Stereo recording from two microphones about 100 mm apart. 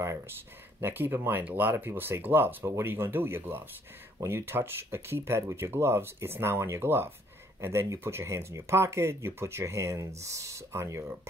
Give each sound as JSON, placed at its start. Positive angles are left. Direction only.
{"t": 0.7, "sound": "speech", "side_deg": -20}